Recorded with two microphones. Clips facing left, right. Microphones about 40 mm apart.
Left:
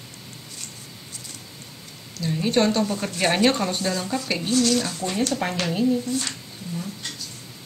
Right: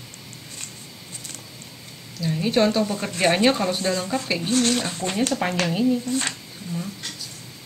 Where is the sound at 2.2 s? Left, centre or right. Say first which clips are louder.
Right 1 dB; centre.